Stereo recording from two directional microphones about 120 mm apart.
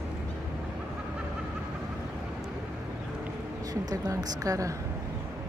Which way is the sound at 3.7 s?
30° right (ahead or behind).